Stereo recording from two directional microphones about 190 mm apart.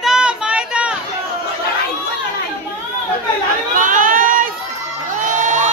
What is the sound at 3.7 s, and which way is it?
Crowd, 45° right (ahead or behind).